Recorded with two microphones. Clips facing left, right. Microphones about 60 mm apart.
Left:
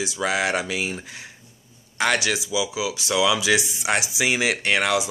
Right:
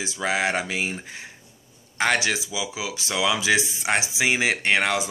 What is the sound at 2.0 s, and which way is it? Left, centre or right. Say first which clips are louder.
Speech: even; right.